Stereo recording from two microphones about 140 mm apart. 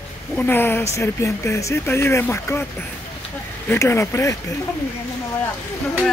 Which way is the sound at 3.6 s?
20° left (ahead or behind).